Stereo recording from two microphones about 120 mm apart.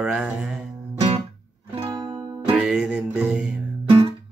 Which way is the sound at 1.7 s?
50° right (ahead or behind).